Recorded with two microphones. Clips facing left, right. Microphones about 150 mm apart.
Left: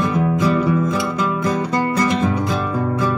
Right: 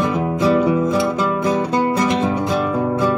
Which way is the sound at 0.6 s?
15° right (ahead or behind).